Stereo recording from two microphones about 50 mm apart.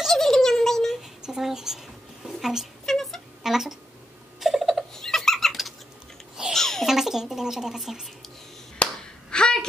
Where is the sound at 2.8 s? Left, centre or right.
Centre.